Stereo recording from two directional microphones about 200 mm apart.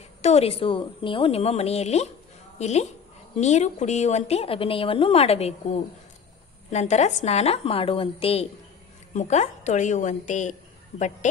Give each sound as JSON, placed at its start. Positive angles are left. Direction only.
{"t": 0.2, "sound": "a woman's voice", "side_deg": 30}